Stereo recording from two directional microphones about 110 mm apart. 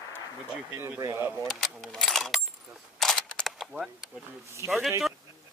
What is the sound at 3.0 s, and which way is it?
Single-lens reflex camera, 5° left (ahead or behind).